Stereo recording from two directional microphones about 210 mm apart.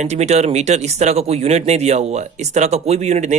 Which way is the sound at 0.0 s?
30° right (ahead or behind).